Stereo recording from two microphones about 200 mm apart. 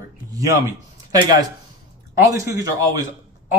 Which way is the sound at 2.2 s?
15° right (ahead or behind).